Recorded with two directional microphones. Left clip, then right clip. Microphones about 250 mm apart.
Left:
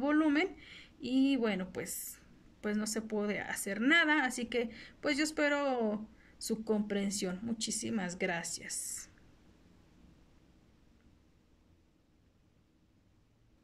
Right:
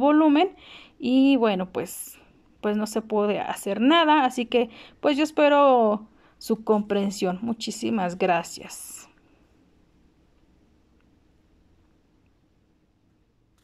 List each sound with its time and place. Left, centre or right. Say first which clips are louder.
0.3 s a woman's voice: right 11 dB; centre